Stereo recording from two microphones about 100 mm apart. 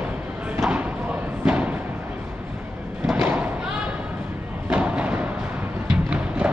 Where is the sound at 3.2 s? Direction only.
15° right (ahead or behind).